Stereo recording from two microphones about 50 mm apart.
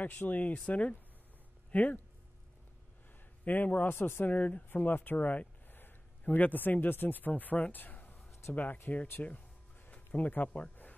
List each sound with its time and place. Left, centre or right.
0.0 s a man's voice: left
3.4 s a man's voice: left
4.4 s speech: left
4.7 s a man's voice: left
5.1 s a man's voice: left
9.8 s a sound: left